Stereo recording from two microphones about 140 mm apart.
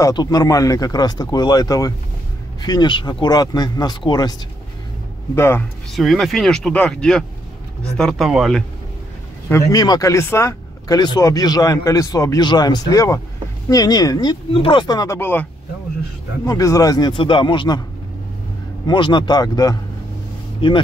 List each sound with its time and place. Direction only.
0.0 s speech: 30° left (ahead or behind)
5.3 s speech: 20° left (ahead or behind)
5.9 s speech: centre (ahead or behind)
9.5 s speech: 25° left (ahead or behind)
14.5 s speech: 40° left (ahead or behind)
15.1 s speech: 15° left (ahead or behind)
16.4 s speech: 25° left (ahead or behind)
18.9 s speech: 35° left (ahead or behind)